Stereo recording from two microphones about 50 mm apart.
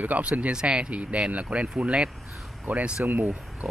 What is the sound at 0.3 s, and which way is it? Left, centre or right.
Speech, centre.